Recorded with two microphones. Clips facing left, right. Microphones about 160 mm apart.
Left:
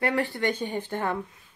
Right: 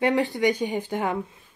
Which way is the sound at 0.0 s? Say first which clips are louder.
Right 4 dB; 20° right (ahead or behind).